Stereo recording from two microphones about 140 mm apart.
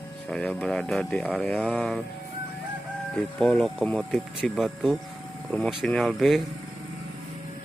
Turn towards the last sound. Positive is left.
turn(degrees=0)  # may be behind; listen again after turning